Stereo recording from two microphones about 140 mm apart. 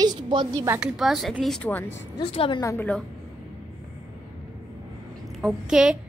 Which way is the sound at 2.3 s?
40° left (ahead or behind).